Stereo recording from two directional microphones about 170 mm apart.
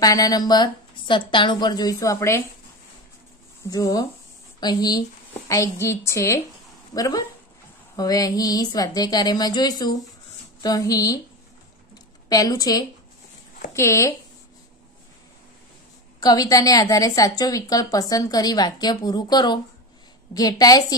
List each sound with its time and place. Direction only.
0.0 s a woman's voice: 20° left (ahead or behind)
3.7 s a woman's voice: 20° left (ahead or behind)
12.3 s a woman's voice: 20° left (ahead or behind)
16.2 s a woman's voice: 20° left (ahead or behind)